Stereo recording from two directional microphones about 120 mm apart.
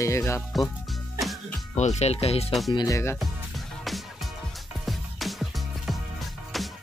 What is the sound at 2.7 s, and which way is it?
Speech, 30° left (ahead or behind).